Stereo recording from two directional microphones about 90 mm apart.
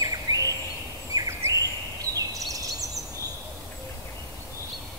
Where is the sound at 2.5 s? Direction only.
40° right (ahead or behind).